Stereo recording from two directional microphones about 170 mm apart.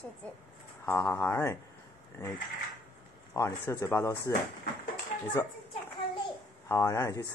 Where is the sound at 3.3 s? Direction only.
15° left (ahead or behind).